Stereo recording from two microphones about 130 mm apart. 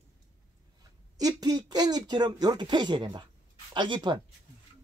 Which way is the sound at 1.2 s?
30° right (ahead or behind).